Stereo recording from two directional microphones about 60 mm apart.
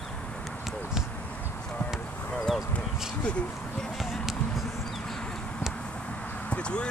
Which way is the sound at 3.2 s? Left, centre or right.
Centre.